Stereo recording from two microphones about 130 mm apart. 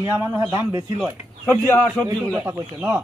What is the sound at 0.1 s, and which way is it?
Speech, 20° right (ahead or behind).